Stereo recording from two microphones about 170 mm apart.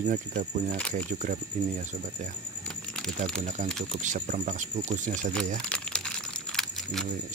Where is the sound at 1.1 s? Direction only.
50° right (ahead or behind).